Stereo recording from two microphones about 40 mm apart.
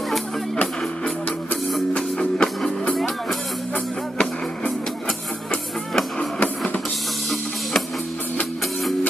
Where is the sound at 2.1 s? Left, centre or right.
Left.